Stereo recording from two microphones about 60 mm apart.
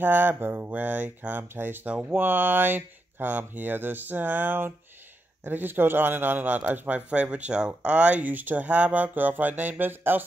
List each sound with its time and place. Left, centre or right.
0.0 s speech: right
1.9 s speech: right
2.1 s speech: right